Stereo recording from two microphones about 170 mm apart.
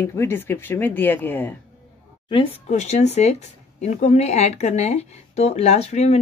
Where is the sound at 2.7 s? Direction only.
40° left (ahead or behind).